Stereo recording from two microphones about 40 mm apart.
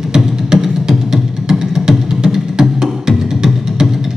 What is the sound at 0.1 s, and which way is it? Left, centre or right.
Music, centre.